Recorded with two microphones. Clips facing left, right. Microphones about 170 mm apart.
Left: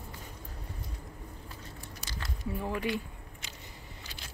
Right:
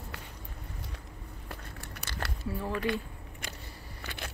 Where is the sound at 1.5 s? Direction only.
65° right (ahead or behind).